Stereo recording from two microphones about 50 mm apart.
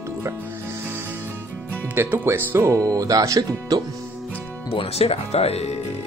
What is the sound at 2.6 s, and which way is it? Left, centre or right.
Speech, right.